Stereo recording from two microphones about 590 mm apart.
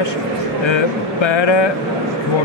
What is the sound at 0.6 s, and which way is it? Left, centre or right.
A man's voice, left.